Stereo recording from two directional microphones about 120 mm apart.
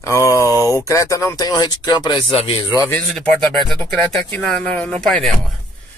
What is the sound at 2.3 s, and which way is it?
Speech, 50° left (ahead or behind).